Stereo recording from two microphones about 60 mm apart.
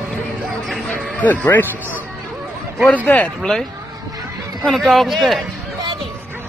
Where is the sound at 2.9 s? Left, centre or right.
Left.